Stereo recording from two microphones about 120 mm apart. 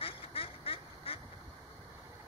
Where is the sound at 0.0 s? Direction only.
50° left (ahead or behind).